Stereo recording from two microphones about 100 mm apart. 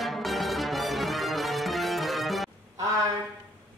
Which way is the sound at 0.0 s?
Centre (ahead or behind).